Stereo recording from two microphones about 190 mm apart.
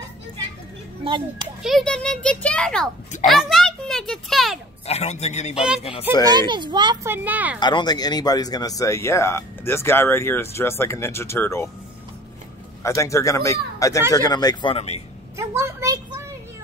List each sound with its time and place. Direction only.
1.0 s a child's voice: 30° right (ahead or behind)
1.6 s a child's voice: centre (ahead or behind)
4.8 s speech: 35° left (ahead or behind)
6.2 s a child's voice: 25° right (ahead or behind)
7.1 s speech: 10° right (ahead or behind)
7.6 s speech: 20° left (ahead or behind)
12.8 s speech: 15° left (ahead or behind)
15.3 s a sound: 15° right (ahead or behind)